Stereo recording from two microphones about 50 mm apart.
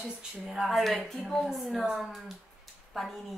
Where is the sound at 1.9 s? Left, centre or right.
Centre.